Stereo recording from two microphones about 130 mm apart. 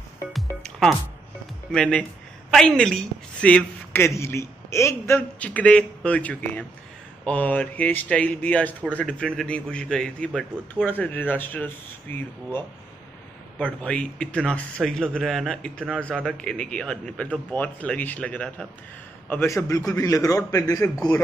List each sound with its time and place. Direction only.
0.3 s music: centre (ahead or behind)
1.7 s a woman's voice: 5° left (ahead or behind)
5.4 s speech: 10° left (ahead or behind)
19.4 s a woman's voice: 25° left (ahead or behind)